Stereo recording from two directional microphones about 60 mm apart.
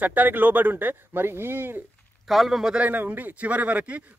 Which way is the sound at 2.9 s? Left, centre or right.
Right.